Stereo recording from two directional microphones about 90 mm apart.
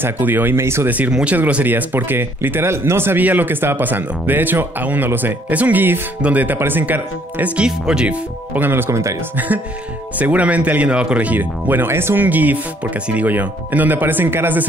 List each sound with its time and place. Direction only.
0.0 s speech: 20° right (ahead or behind)
0.8 s speech: 20° right (ahead or behind); by 9.2 s 35° right (ahead or behind)
10.1 s speech: 15° right (ahead or behind)